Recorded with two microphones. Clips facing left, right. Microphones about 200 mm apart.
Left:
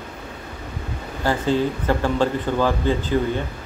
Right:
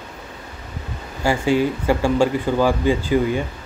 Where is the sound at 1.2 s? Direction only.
10° right (ahead or behind).